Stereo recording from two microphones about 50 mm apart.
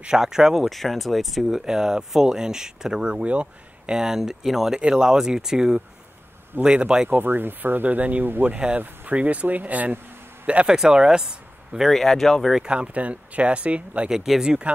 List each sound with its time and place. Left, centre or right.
0.0 s speech: centre
0.7 s speech: centre
7.1 s speech: right; by 11.9 s centre
11.9 s speech: centre
12.6 s speech: right
14.0 s speech: centre